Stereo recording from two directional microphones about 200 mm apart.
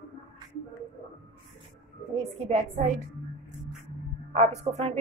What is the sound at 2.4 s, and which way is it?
Speech, 35° right (ahead or behind).